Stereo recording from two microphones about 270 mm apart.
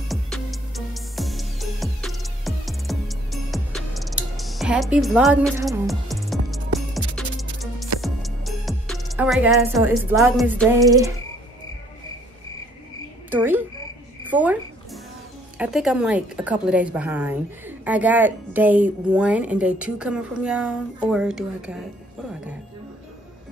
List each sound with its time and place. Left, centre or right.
0.1 s music: centre
8.0 s speech: centre
13.3 s speech: centre
14.3 s a sound: centre
15.5 s a woman's voice: centre